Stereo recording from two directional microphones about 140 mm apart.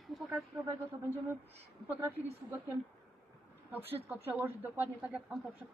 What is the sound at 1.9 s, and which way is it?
Speech, 15° right (ahead or behind).